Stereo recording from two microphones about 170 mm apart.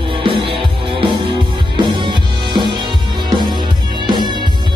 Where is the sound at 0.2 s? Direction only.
30° right (ahead or behind).